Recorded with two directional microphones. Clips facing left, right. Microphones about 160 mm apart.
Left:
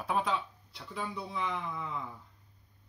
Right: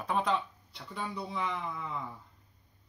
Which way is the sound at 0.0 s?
Centre (ahead or behind).